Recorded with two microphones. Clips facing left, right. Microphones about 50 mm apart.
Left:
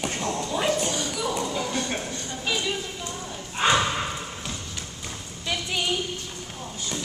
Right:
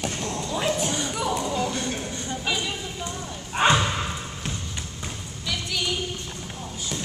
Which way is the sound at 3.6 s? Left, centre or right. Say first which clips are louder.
Right 3 dB; right.